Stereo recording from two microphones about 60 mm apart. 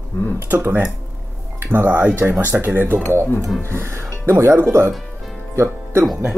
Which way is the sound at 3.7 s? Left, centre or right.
Right.